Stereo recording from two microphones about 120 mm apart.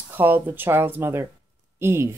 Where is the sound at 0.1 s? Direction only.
15° right (ahead or behind).